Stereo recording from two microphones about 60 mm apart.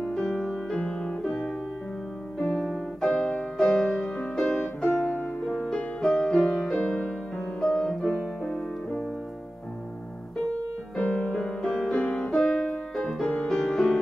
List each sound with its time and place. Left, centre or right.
0.0 s music: centre
11.0 s music: centre
12.0 s music: left
12.3 s music: centre